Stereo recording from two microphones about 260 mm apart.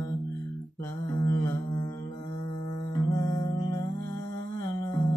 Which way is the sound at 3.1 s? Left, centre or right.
Centre.